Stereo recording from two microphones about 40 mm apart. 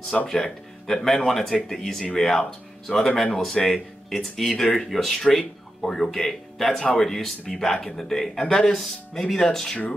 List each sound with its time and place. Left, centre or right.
0.3 s speech: centre
1.0 s speech: centre